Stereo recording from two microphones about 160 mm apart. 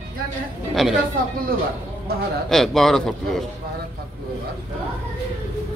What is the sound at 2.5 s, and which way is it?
Speech, centre (ahead or behind).